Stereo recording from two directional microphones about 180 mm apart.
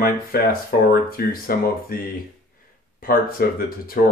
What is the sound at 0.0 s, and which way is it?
Speech, 55° left (ahead or behind).